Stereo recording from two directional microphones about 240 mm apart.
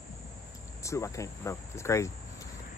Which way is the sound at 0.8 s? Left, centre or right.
Centre.